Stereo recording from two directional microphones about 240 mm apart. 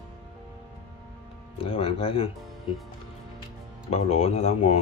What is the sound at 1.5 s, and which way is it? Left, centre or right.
Speech, left.